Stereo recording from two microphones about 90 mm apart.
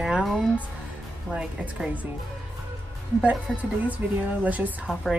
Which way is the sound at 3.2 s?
15° right (ahead or behind).